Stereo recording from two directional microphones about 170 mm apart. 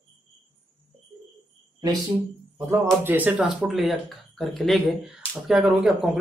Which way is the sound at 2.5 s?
15° right (ahead or behind).